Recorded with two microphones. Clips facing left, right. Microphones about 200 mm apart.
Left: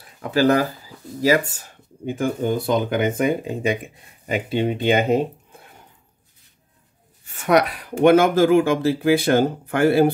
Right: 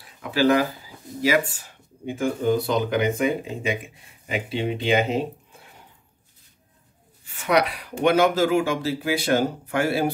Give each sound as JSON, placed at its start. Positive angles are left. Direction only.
{"t": 0.2, "sound": "speech", "side_deg": 40}
{"t": 2.0, "sound": "speech", "side_deg": 50}
{"t": 7.3, "sound": "speech", "side_deg": 50}